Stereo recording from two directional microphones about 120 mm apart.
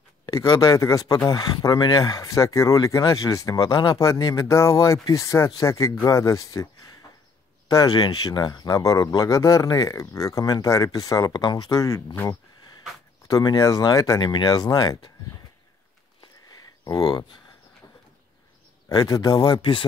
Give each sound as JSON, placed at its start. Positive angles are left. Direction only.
{"t": 0.4, "sound": "speech", "side_deg": 30}
{"t": 13.3, "sound": "speech", "side_deg": 30}
{"t": 16.8, "sound": "speech", "side_deg": 30}
{"t": 18.9, "sound": "speech", "side_deg": 30}